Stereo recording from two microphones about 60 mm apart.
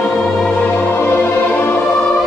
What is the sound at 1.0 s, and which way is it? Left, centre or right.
Music, left.